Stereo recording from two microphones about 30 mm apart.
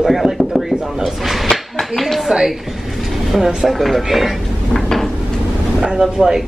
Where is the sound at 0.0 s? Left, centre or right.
Centre.